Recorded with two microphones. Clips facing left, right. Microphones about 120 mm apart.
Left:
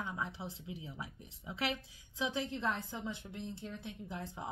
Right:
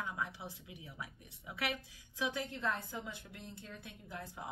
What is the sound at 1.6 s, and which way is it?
Speech, 25° left (ahead or behind).